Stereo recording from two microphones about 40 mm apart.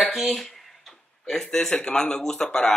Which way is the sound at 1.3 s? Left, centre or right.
Centre.